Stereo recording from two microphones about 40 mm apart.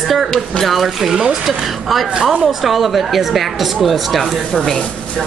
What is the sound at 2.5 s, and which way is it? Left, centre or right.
Speech, centre.